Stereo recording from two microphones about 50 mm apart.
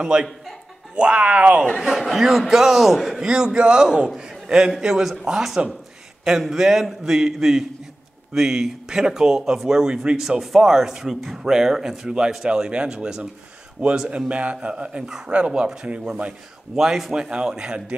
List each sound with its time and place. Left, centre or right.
0.0 s speech: centre
1.8 s a man's voice: centre
3.3 s speech: centre